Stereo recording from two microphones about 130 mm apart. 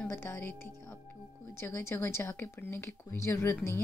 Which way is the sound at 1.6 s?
20° left (ahead or behind).